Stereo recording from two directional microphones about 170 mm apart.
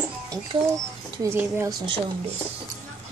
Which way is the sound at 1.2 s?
15° right (ahead or behind).